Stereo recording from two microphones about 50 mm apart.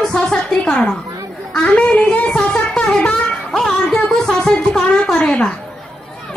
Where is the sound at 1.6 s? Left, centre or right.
Left.